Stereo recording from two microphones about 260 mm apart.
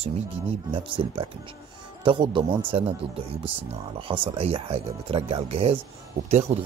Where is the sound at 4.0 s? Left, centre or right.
Centre.